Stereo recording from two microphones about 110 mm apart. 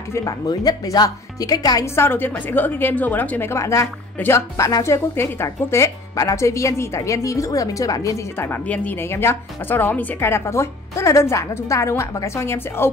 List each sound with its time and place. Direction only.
0.1 s speech: 35° left (ahead or behind)
2.0 s a woman's voice: 20° left (ahead or behind)
8.5 s a woman's voice: 15° left (ahead or behind)